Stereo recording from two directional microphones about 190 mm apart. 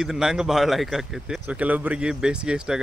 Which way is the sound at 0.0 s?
5° right (ahead or behind).